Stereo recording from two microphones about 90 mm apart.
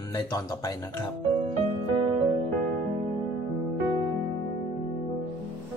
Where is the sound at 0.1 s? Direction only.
40° left (ahead or behind).